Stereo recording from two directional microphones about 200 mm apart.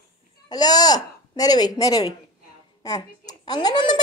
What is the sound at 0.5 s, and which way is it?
Speech, 20° left (ahead or behind).